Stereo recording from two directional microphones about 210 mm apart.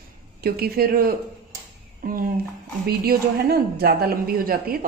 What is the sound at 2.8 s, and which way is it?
A woman's voice, 45° right (ahead or behind).